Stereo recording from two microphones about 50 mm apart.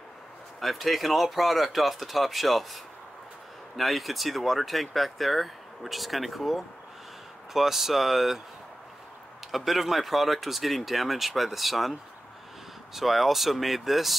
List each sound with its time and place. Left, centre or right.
0.6 s speech: centre
9.5 s speech: centre
12.9 s speech: centre